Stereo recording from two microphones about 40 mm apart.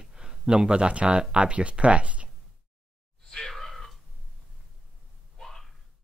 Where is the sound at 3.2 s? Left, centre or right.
Centre.